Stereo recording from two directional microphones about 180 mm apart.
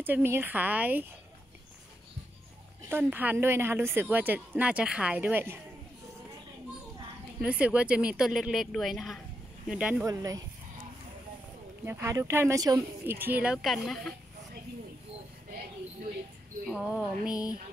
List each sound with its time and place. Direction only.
0.0 s a woman's voice: 10° right (ahead or behind)
2.9 s a woman's voice: 10° right (ahead or behind)
7.4 s speech: 5° right (ahead or behind)
10.0 s speech: 20° right (ahead or behind)
11.8 s a woman's voice: 15° right (ahead or behind); by 14.1 s 5° left (ahead or behind)
16.6 s speech: 5° right (ahead or behind)